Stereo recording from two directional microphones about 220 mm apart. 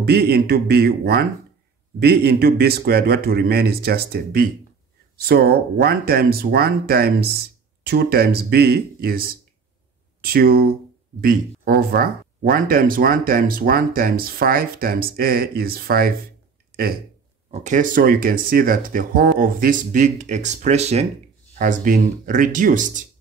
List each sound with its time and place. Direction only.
0.0 s speech: 45° right (ahead or behind)
17.5 s speech: 35° right (ahead or behind)